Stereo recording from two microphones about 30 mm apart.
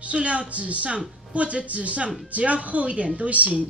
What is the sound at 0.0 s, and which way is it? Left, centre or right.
Speech, right.